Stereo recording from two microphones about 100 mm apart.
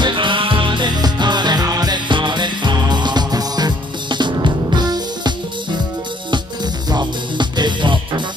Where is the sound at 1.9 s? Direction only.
50° right (ahead or behind).